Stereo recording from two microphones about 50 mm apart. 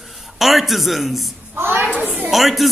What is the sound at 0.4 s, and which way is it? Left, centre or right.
Speech, centre.